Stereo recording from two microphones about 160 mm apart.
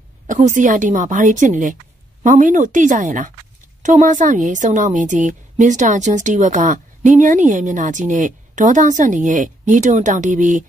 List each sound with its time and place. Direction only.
0.3 s a woman's voice: 50° right (ahead or behind)